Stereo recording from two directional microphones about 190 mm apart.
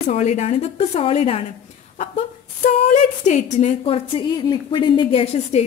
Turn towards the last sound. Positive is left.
turn(degrees=30)  # may be behind; listen again after turning